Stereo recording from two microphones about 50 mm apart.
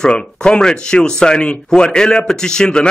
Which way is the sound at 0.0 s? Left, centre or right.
Centre.